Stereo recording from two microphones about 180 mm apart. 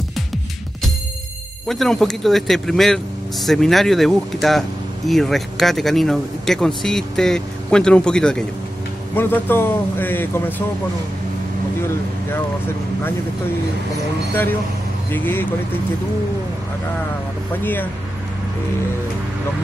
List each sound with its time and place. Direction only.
1.7 s a man's voice: centre (ahead or behind)
15.0 s speech: 10° left (ahead or behind)